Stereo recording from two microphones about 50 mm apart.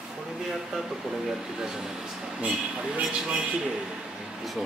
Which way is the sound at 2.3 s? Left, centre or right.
Right.